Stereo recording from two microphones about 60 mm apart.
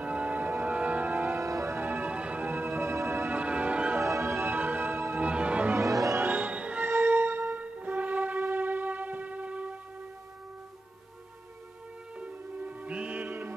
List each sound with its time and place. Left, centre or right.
0.0 s music: right
1.4 s music: right
1.8 s music: right
2.4 s music: right
3.3 s music: right
4.0 s music: right
5.2 s music: right
5.8 s music: right
6.3 s music: right
6.8 s music: right
7.5 s music: right
12.2 s music: right